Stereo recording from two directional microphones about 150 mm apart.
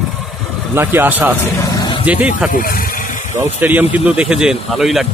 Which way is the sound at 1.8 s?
30° left (ahead or behind).